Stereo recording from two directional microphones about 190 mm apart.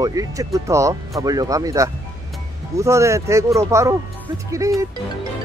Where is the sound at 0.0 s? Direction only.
20° right (ahead or behind).